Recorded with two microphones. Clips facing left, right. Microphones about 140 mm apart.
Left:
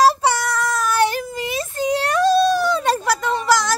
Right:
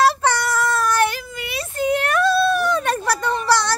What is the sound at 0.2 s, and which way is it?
Child singing, 10° left (ahead or behind).